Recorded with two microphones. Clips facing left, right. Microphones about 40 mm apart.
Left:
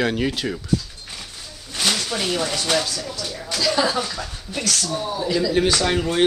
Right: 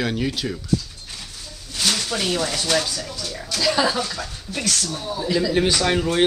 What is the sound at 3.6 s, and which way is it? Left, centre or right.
Speech, centre.